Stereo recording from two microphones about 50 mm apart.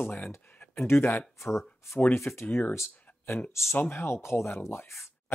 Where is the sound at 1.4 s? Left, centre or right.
Left.